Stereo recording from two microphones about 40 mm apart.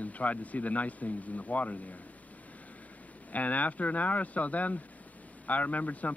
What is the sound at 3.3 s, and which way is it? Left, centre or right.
Speech, left.